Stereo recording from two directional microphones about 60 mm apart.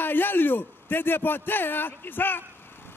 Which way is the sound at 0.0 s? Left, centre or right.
Left.